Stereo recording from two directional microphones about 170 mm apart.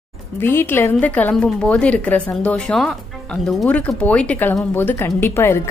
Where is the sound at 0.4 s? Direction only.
15° left (ahead or behind).